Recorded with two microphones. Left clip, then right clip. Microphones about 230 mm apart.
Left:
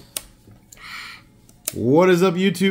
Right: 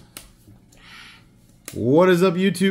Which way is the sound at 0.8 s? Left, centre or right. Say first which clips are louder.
Left 8 dB; left.